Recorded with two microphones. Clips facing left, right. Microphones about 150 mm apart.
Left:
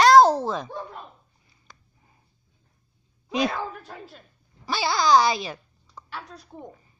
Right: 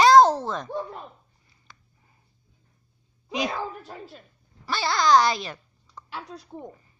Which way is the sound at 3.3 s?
15° right (ahead or behind).